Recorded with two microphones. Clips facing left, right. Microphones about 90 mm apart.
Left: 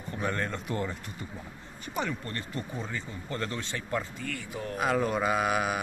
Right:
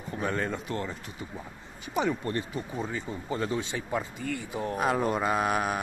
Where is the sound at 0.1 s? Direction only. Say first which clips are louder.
Right 2 dB; 5° right (ahead or behind).